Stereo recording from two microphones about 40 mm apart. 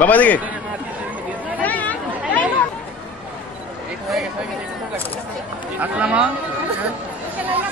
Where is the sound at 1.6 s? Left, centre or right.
Left.